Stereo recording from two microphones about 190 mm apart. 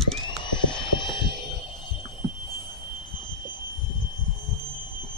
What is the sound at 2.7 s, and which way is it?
Train, 25° left (ahead or behind).